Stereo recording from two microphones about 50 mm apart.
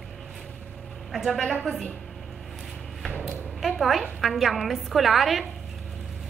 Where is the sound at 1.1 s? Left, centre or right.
Centre.